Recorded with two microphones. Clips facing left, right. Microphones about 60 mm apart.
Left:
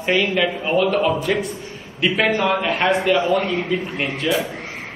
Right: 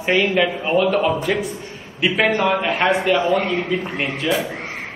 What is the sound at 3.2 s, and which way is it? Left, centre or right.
Speech, right.